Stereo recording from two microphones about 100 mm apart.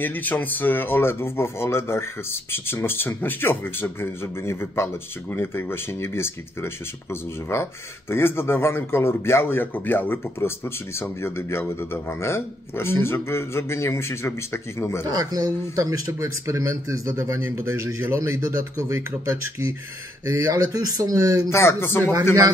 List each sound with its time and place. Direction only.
0.0 s speech: 20° left (ahead or behind)
8.1 s speech: 25° left (ahead or behind)
15.0 s speech: 40° right (ahead or behind)
21.5 s speech: 25° left (ahead or behind)